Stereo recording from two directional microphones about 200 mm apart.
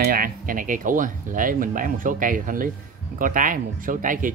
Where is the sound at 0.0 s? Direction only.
45° right (ahead or behind).